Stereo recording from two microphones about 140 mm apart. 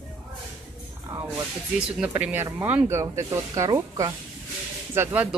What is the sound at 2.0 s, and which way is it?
Speech, 10° right (ahead or behind).